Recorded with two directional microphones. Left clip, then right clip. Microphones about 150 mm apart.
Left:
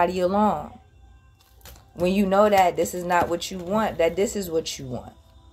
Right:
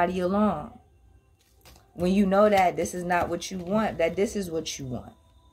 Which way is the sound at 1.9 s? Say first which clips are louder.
Left 3 dB; 40° right (ahead or behind).